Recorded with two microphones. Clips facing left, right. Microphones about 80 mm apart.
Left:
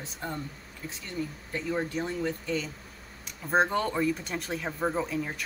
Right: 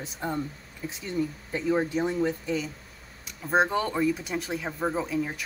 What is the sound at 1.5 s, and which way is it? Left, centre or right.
Speech, centre.